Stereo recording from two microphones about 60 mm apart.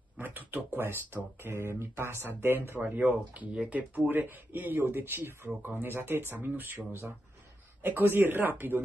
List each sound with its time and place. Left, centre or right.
0.2 s speech: right